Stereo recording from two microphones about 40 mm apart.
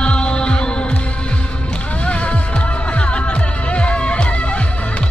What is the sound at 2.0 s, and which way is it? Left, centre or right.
Music, left.